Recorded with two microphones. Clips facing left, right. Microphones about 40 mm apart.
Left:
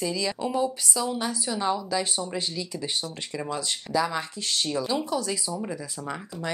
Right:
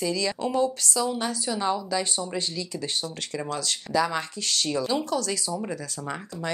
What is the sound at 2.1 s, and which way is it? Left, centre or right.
Speech, centre.